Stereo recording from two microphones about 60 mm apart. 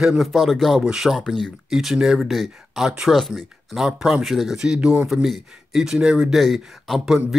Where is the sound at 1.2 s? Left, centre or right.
Centre.